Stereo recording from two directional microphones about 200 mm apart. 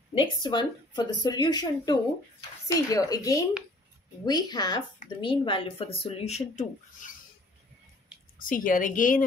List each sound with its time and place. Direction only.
0.1 s a woman's voice: 25° left (ahead or behind)
8.4 s a woman's voice: 45° left (ahead or behind)